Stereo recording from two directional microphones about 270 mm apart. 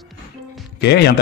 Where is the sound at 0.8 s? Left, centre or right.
Left.